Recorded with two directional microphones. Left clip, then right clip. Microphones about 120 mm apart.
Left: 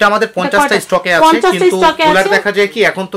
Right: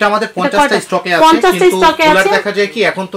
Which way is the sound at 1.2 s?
10° right (ahead or behind).